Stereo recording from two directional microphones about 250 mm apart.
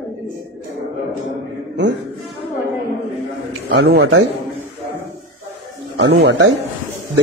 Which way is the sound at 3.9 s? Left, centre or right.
Right.